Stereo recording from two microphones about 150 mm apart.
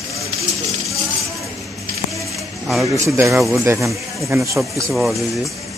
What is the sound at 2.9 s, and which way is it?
A man's voice, 20° right (ahead or behind).